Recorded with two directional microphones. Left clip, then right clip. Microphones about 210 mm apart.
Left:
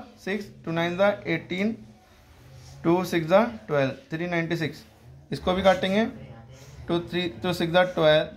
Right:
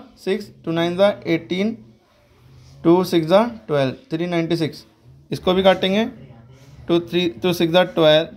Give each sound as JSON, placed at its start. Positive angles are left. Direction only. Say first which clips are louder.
{"t": 0.2, "sound": "speech", "louder": "right 8 dB", "side_deg": -25}
{"t": 2.8, "sound": "speech", "louder": "right 8 dB", "side_deg": -20}